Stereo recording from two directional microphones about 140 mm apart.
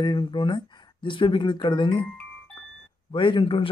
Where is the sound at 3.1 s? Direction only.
35° left (ahead or behind).